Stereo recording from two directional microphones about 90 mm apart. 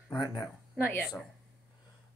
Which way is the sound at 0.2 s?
50° left (ahead or behind).